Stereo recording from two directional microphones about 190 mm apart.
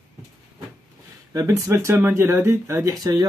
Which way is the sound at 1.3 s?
15° right (ahead or behind).